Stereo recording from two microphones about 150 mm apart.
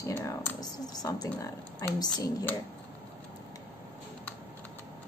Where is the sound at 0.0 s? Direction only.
20° left (ahead or behind).